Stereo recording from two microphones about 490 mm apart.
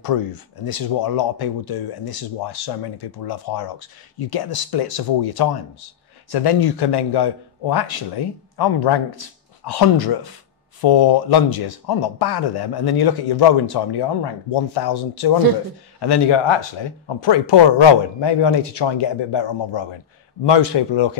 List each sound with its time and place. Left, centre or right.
0.0 s speech: left